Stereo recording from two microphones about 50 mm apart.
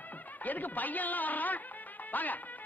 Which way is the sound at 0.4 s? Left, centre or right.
Left.